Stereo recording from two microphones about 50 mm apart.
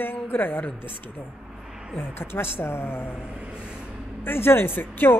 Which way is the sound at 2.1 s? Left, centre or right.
Left.